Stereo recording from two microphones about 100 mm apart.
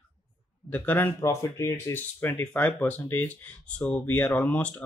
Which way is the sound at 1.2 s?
30° left (ahead or behind).